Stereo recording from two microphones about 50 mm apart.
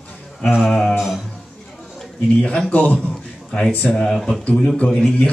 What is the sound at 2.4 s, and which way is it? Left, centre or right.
A man's voice, left.